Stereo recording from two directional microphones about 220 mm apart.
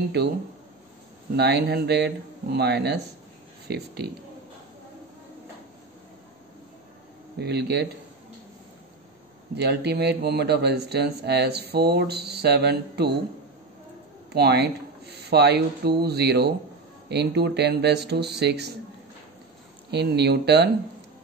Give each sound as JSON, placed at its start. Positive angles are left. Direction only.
{"t": 1.3, "sound": "speech", "side_deg": -50}
{"t": 7.3, "sound": "speech", "side_deg": -50}
{"t": 9.6, "sound": "speech", "side_deg": -50}
{"t": 14.3, "sound": "speech", "side_deg": -50}
{"t": 19.9, "sound": "speech", "side_deg": -50}